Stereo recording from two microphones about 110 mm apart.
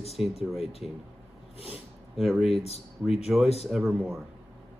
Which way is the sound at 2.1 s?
Centre (ahead or behind).